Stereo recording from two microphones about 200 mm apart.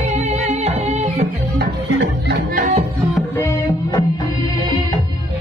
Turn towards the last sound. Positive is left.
turn(degrees=15)  # may be behind; listen again after turning